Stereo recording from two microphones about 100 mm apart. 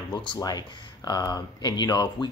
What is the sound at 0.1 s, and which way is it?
Speech, 50° left (ahead or behind).